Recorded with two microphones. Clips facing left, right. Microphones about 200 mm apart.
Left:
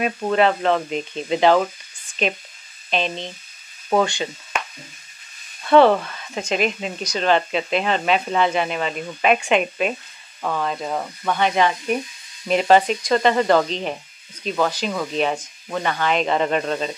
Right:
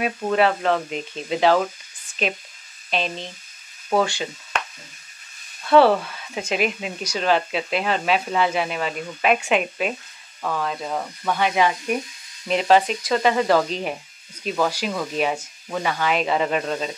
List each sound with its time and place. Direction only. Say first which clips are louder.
0.0 s speech: left 1 dB; centre (ahead or behind)
2.9 s speech: left 2 dB; centre (ahead or behind)
5.6 s speech: left 1 dB; 5° right (ahead or behind)